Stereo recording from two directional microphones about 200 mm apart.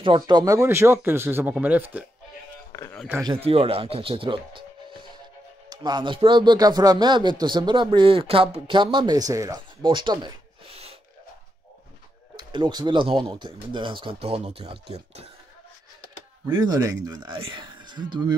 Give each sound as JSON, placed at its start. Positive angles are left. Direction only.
{"t": 0.0, "sound": "speech", "side_deg": -25}
{"t": 2.7, "sound": "a sound", "side_deg": 15}
{"t": 3.2, "sound": "speech", "side_deg": -15}
{"t": 3.4, "sound": "speech", "side_deg": -30}
{"t": 12.4, "sound": "speech", "side_deg": -20}
{"t": 16.4, "sound": "speech", "side_deg": -20}